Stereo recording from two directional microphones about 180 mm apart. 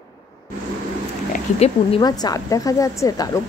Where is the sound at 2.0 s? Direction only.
20° left (ahead or behind).